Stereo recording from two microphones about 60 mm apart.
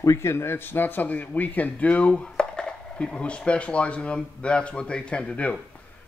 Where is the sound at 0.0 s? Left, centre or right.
Left.